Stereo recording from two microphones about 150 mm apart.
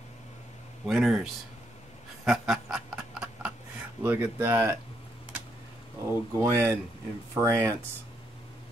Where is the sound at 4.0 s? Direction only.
10° right (ahead or behind).